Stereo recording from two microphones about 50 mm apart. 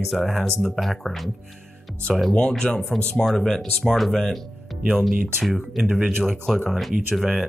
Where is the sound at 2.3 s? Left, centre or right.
Centre.